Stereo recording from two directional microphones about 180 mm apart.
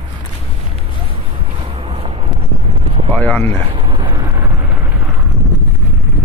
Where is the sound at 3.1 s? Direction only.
10° left (ahead or behind).